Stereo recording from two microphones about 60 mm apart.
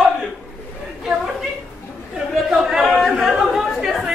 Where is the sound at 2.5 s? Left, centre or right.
Centre.